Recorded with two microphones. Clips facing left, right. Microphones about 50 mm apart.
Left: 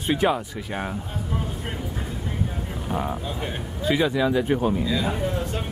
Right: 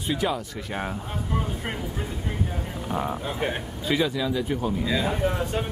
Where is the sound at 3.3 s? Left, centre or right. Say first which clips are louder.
Right 3 dB; right.